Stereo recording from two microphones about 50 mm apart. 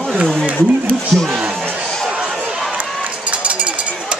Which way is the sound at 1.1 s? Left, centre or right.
Centre.